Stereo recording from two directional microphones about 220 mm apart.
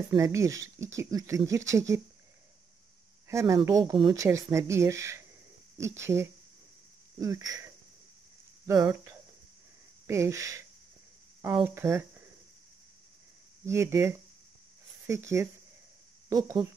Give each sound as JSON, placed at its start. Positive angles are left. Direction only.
{"t": 0.1, "sound": "speech", "side_deg": -15}
{"t": 3.3, "sound": "speech", "side_deg": -15}
{"t": 11.6, "sound": "speech", "side_deg": -10}
{"t": 13.7, "sound": "speech", "side_deg": -15}
{"t": 15.0, "sound": "speech", "side_deg": -15}